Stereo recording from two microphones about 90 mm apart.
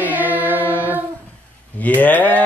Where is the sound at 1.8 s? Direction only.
20° left (ahead or behind).